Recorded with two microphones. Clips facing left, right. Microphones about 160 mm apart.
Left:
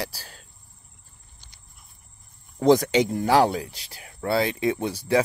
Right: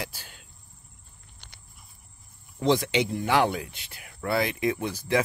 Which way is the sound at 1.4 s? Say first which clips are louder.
Right 5 dB; 65° right (ahead or behind).